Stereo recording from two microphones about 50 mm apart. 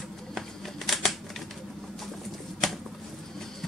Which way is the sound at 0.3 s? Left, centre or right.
Centre.